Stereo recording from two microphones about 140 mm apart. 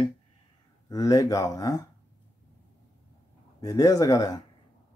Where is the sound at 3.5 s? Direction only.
25° left (ahead or behind).